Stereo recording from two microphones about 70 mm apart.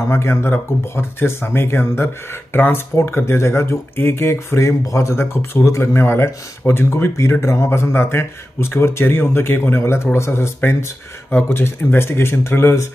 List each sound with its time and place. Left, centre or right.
0.1 s speech: left
11.2 s speech: left